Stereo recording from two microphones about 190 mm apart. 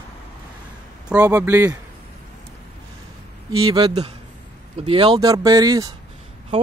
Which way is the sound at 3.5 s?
25° right (ahead or behind).